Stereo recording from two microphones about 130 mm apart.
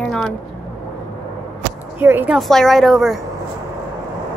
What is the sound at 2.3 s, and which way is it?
Speech, centre (ahead or behind).